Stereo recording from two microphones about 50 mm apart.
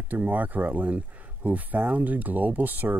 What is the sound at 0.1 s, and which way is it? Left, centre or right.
Speech, right.